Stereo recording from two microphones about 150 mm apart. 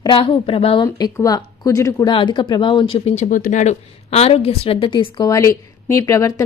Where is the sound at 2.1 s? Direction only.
35° left (ahead or behind).